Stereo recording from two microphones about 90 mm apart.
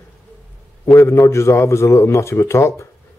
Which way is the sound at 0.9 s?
30° left (ahead or behind).